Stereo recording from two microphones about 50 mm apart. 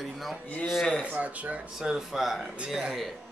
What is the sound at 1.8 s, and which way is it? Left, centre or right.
Speech, centre.